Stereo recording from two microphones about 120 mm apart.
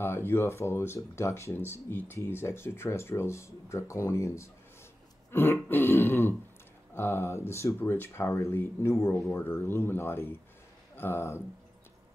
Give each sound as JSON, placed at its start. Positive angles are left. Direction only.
{"t": 0.0, "sound": "speech", "side_deg": 20}